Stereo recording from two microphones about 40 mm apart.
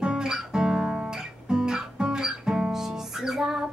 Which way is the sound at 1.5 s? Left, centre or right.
Centre.